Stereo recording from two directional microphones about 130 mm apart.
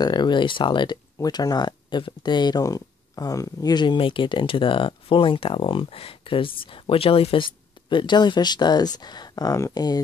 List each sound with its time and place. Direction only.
0.0 s speech: 35° left (ahead or behind)